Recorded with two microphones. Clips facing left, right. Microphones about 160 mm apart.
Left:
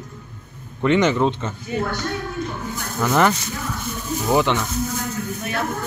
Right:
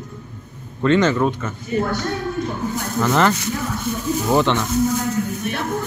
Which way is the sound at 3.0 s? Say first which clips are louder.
Even; 10° left (ahead or behind).